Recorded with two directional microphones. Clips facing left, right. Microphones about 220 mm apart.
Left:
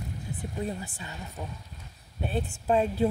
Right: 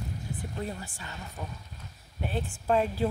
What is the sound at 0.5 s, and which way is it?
Speech, 20° left (ahead or behind).